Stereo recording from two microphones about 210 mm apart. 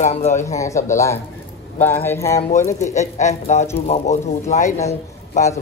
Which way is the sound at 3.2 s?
35° left (ahead or behind).